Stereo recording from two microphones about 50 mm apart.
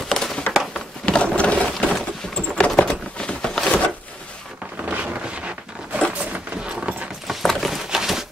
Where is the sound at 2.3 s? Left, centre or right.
Centre.